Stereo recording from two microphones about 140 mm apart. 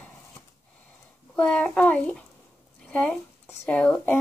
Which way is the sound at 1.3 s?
10° left (ahead or behind).